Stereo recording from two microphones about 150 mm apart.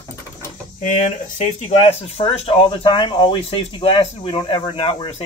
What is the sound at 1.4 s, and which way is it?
Speech, 45° left (ahead or behind).